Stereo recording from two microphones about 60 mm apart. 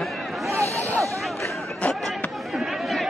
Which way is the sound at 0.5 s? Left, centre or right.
Right.